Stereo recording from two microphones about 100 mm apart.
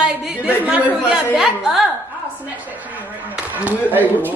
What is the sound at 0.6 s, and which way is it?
Speech, 15° right (ahead or behind).